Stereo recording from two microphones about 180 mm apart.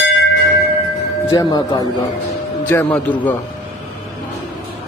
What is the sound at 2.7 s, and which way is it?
Speech, 10° left (ahead or behind).